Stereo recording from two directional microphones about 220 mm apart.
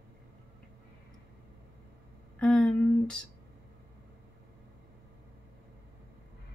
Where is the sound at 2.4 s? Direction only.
5° left (ahead or behind).